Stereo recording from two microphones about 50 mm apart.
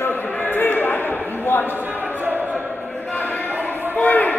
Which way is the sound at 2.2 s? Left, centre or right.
Right.